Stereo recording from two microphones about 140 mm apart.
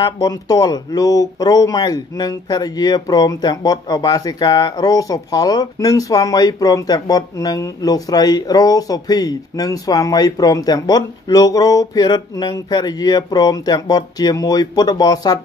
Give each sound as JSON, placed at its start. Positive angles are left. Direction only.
{"t": 0.0, "sound": "speech", "side_deg": 25}